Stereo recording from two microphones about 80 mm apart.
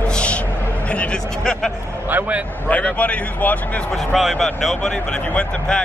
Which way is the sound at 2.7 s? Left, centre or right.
Centre.